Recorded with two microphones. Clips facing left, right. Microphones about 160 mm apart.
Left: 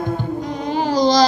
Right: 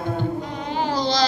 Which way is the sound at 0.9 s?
40° left (ahead or behind).